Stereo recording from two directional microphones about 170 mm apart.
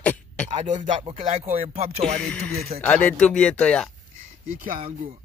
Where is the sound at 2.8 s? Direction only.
5° left (ahead or behind).